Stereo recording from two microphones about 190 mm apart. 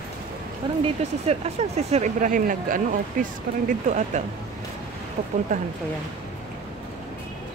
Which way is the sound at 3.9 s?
40° right (ahead or behind).